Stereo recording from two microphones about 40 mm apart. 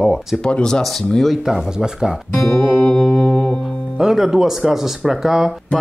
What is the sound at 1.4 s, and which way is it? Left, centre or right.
Speech, centre.